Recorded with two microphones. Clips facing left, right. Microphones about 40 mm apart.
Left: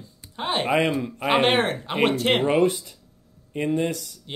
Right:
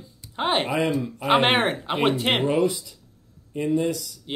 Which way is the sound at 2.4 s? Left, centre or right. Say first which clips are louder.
Left 2 dB; left.